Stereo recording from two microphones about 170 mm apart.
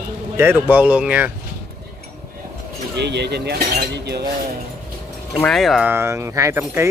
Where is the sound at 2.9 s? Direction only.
80° right.